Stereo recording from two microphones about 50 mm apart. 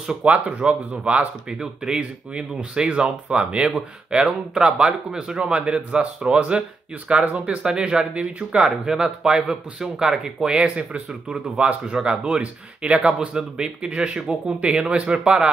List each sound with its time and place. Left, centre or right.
0.2 s speech: right